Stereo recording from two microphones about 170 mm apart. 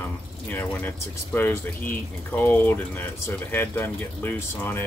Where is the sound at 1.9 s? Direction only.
10° left (ahead or behind).